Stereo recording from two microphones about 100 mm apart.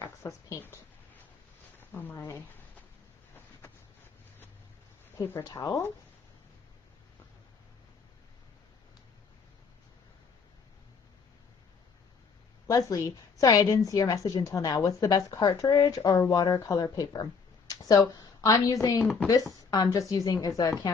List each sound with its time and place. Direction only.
0.0 s speech: 30° left (ahead or behind)
1.8 s speech: 20° left (ahead or behind)
5.1 s a woman's voice: 30° left (ahead or behind)
12.6 s a woman's voice: 35° left (ahead or behind)